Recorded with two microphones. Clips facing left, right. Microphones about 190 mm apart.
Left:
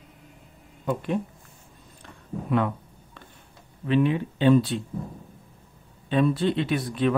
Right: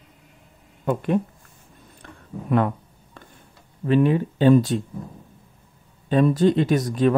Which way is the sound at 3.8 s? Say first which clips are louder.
Right 4 dB; 45° right (ahead or behind).